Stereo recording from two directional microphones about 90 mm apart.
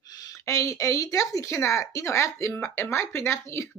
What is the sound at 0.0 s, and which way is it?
A woman's voice, 45° left (ahead or behind).